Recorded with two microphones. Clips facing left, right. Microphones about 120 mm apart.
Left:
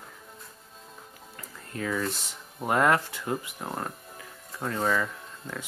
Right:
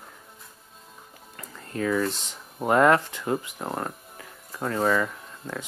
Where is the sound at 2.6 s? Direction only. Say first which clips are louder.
Right 4 dB; 30° right (ahead or behind).